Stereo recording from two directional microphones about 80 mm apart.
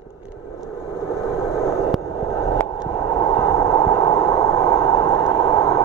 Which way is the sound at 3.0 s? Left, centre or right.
Left.